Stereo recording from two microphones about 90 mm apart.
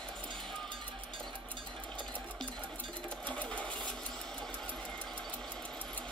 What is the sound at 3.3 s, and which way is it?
Sewing machine, 15° left (ahead or behind).